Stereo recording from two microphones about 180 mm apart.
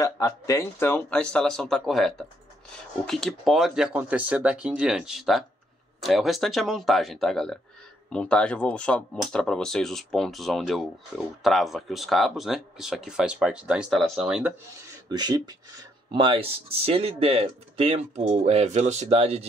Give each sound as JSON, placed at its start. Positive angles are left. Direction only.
{"t": 0.0, "sound": "speech", "side_deg": 15}
{"t": 15.0, "sound": "speech", "side_deg": -20}